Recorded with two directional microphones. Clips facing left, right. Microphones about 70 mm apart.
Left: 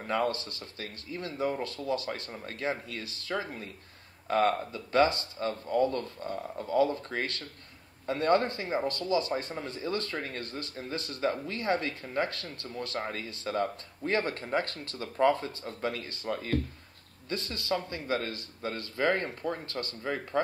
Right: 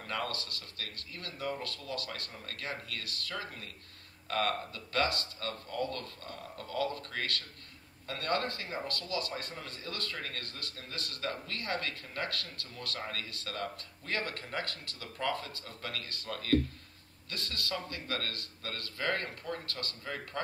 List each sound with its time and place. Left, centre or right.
0.0 s speech: left